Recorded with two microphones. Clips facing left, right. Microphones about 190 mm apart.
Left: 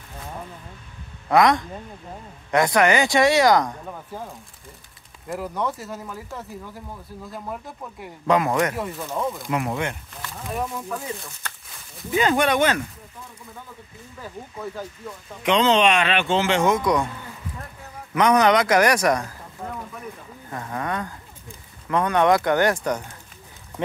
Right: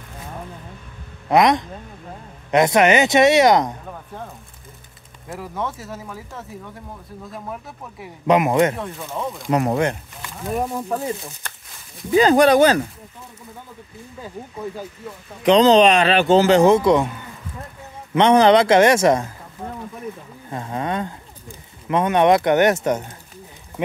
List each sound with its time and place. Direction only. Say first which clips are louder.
1.3 s speech: right 2 dB; 20° right (ahead or behind)
5.3 s speech: left 1 dB; centre (ahead or behind)
8.3 s speech: right 4 dB; 20° right (ahead or behind)
8.7 s speech: left 1 dB; 5° left (ahead or behind)
9.5 s a man's voice: right 6 dB; 40° right (ahead or behind)
15.4 s a man's voice: right 6 dB; 35° right (ahead or behind)
18.1 s speech: right 4 dB; 30° right (ahead or behind)
20.4 s speech: right 3 dB; 20° right (ahead or behind)